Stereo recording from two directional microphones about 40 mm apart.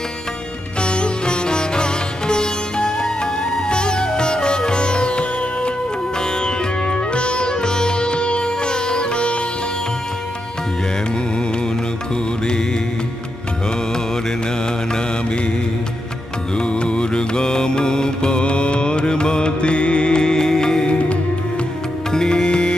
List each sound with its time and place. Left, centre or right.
0.8 s music: left
6.4 s sitar: left
16.5 s mantra: left
22.1 s music: centre